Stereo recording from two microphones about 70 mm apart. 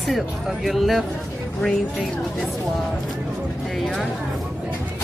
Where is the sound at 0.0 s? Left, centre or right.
Centre.